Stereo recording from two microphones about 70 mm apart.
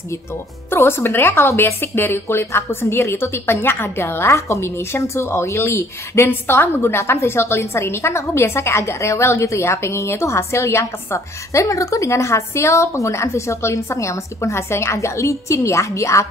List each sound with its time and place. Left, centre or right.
0.7 s speech: left